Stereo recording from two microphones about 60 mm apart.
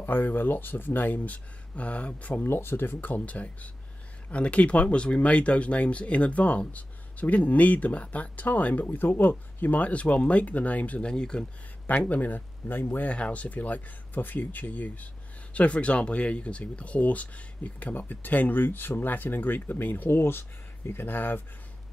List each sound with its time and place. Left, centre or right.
0.0 s speech: left
2.4 s speech: left; by 11.4 s centre
11.9 s speech: left
13.1 s speech: left